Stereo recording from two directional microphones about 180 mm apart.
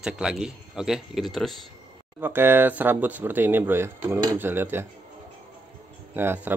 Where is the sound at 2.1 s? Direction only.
10° right (ahead or behind).